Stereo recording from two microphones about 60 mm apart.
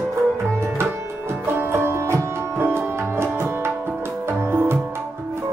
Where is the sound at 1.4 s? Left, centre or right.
Right.